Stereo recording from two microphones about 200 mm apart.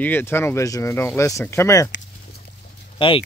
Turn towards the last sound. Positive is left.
turn(degrees=25)  # may be behind; listen again after turning